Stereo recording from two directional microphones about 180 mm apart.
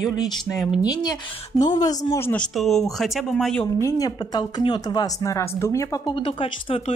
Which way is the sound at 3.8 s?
20° left (ahead or behind).